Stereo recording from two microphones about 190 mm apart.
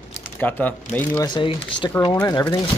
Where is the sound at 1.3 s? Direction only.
25° left (ahead or behind).